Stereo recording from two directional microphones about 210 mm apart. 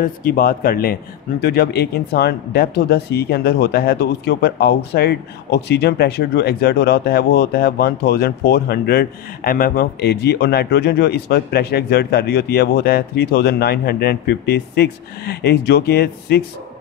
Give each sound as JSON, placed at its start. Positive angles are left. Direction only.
{"t": 0.2, "sound": "speech", "side_deg": 45}